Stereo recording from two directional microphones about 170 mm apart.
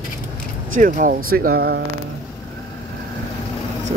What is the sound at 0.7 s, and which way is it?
Speech, 55° right (ahead or behind).